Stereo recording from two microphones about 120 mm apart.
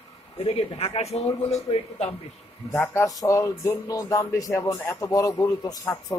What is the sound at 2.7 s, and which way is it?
Speech, 20° left (ahead or behind).